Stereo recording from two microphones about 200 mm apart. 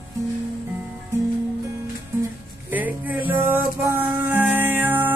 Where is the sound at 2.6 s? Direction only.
10° right (ahead or behind).